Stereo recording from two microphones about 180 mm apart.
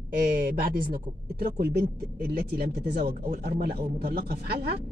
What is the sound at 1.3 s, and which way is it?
Speech, 60° right (ahead or behind).